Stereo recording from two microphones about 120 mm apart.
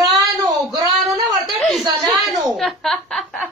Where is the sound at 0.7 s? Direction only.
30° right (ahead or behind).